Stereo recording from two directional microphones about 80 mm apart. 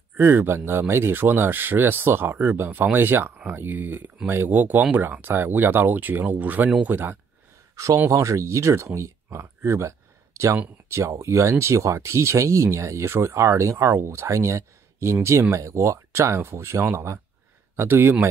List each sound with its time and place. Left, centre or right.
0.2 s speech: right
7.7 s speech: right